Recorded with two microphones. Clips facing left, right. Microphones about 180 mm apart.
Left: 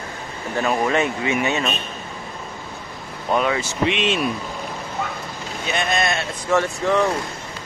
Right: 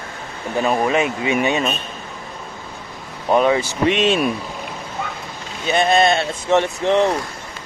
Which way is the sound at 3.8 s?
40° right (ahead or behind).